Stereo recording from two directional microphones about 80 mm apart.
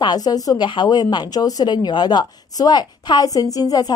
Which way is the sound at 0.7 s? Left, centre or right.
Left.